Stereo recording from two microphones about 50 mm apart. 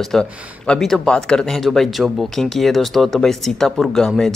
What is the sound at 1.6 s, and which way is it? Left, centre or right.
Speech, centre.